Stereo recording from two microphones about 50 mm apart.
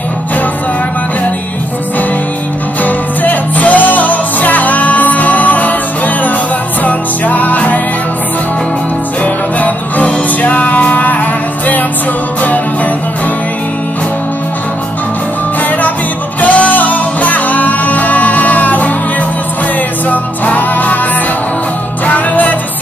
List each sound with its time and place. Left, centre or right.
2.8 s music: left
9.2 s music: left
16.3 s music: left
20.1 s music: left
22.0 s music: left